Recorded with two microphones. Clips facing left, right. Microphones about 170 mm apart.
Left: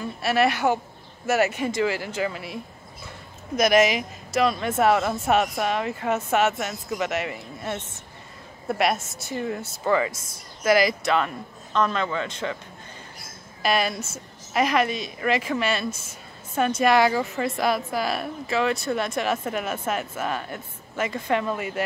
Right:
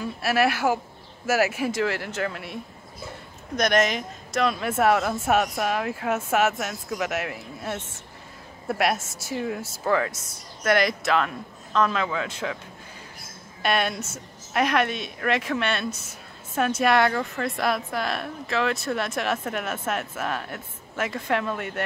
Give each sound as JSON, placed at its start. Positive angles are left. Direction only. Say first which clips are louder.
{"t": 0.0, "sound": "a woman's voice", "louder": "left 1 dB", "side_deg": 0}
{"t": 13.6, "sound": "a woman's voice", "louder": "left 1 dB", "side_deg": 0}